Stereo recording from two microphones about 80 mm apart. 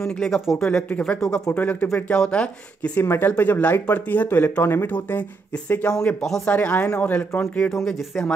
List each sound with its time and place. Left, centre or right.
0.0 s speech: centre
1.5 s speech: left
3.0 s speech: left
5.9 s speech: centre
6.4 s speech: centre